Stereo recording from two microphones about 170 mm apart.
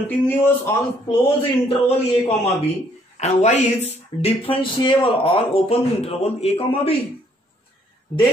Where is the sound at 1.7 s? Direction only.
35° left (ahead or behind).